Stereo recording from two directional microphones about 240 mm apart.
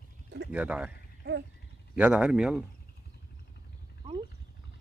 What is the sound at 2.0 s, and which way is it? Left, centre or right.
Speech, centre.